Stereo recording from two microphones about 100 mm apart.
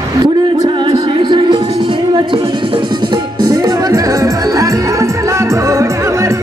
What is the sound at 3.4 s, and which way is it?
Music, 45° right (ahead or behind).